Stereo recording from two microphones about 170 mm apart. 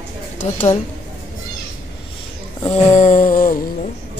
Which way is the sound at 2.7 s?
45° left (ahead or behind).